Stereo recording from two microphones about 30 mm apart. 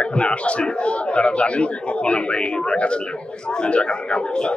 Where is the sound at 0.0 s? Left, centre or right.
Left.